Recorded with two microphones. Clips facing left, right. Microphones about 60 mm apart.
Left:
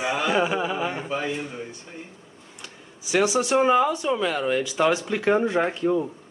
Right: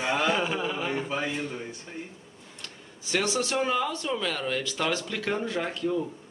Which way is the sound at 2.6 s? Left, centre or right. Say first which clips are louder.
Left 2 dB; centre.